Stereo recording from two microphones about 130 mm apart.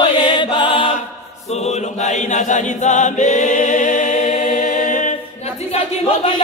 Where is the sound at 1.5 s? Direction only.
60° left (ahead or behind); by 5.1 s 80° left.